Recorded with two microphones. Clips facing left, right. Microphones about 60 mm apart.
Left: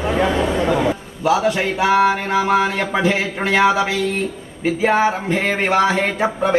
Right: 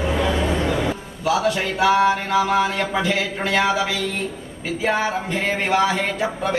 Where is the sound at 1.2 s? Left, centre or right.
Left.